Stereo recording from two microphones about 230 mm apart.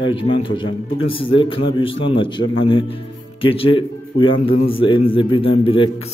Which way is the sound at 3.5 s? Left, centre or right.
Left.